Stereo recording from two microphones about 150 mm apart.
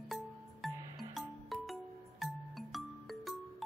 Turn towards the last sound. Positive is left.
turn(degrees=0)  # may be behind; listen again after turning